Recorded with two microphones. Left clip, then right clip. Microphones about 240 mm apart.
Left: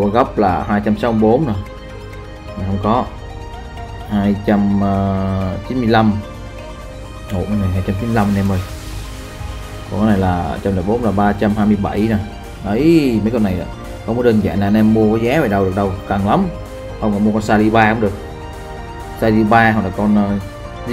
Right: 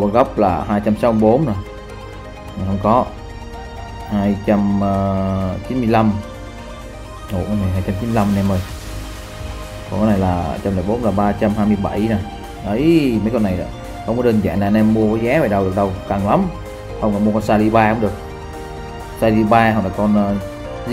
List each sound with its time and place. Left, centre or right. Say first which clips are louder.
0.1 s speech: even; centre
2.8 s speech: right 2 dB; centre
4.1 s speech: left 1 dB; centre
7.3 s speech: left 1 dB; centre
9.9 s speech: left 1 dB; centre
19.2 s speech: left 1 dB; centre